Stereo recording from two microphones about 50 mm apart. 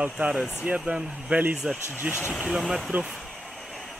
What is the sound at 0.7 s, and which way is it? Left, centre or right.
Speech, right.